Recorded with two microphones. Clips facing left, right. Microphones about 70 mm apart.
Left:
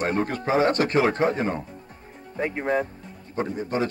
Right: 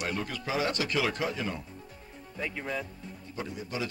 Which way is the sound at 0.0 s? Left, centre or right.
Left.